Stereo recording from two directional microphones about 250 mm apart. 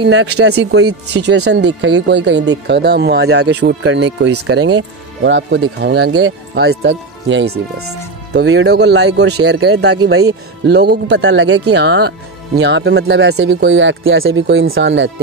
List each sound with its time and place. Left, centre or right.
0.0 s speech: right